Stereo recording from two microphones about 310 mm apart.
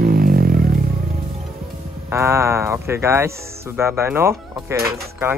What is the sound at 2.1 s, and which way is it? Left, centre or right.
Speech, centre.